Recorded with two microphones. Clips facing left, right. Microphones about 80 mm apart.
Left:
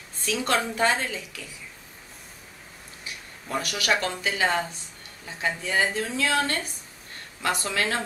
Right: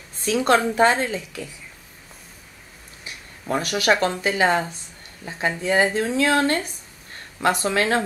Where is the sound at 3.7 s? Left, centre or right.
Right.